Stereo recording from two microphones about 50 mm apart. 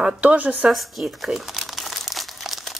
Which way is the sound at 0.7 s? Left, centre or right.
Centre.